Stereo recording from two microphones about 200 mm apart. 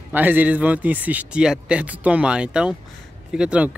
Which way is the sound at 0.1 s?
10° right (ahead or behind).